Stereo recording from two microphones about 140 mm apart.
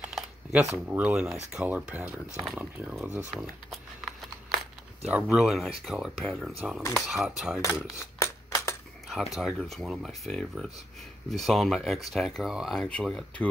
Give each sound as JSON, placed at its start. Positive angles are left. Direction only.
{"t": 0.1, "sound": "camera", "side_deg": -5}
{"t": 0.8, "sound": "speech", "side_deg": -5}
{"t": 3.3, "sound": "a sound", "side_deg": 0}
{"t": 5.9, "sound": "speech", "side_deg": 0}
{"t": 8.2, "sound": "a sound", "side_deg": 20}
{"t": 9.1, "sound": "speech", "side_deg": 0}